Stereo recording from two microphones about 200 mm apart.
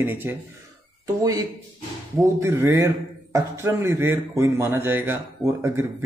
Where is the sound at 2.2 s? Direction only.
15° right (ahead or behind).